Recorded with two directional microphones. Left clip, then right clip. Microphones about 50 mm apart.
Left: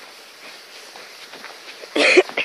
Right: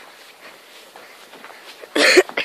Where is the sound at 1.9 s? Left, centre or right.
Right.